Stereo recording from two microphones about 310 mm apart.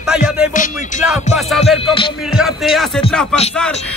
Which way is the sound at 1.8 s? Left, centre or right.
Centre.